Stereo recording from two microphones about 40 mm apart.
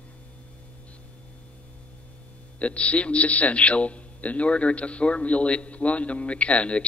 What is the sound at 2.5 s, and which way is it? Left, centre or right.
A man's voice, left.